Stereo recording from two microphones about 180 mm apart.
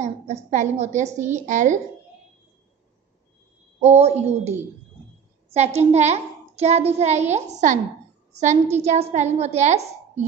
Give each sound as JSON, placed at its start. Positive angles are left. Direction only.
{"t": 0.0, "sound": "a child's voice", "side_deg": -40}
{"t": 3.8, "sound": "a child's voice", "side_deg": -35}